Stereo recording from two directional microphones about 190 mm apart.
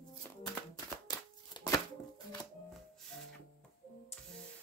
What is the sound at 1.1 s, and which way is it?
Shuffling cards, 20° left (ahead or behind).